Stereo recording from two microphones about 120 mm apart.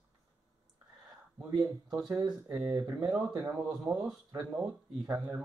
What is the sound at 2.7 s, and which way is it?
Speech, 25° right (ahead or behind).